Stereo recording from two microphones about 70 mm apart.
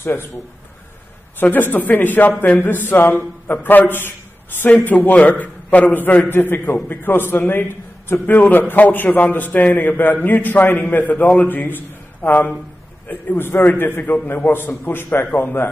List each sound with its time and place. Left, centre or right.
1.4 s a man's voice: left